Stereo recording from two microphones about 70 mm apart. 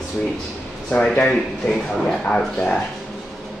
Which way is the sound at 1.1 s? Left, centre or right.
Centre.